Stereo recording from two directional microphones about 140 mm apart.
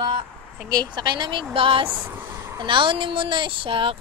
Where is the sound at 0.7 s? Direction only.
30° right (ahead or behind).